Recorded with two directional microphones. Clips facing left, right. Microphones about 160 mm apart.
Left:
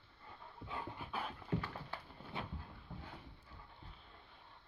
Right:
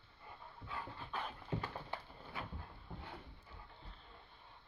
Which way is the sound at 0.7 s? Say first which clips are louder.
Left 1 dB; 10° left (ahead or behind).